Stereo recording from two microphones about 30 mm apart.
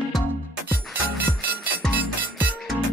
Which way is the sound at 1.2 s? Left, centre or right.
Right.